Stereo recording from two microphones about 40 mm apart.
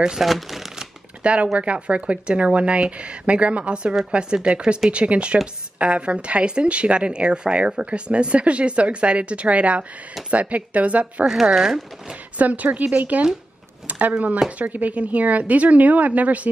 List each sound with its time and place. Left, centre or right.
0.2 s shuffling cards: centre
1.2 s speech: right
11.5 s speech: centre
12.4 s speech: right